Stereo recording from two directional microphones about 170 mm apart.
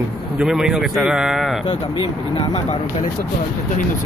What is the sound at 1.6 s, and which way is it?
Speech, 30° left (ahead or behind).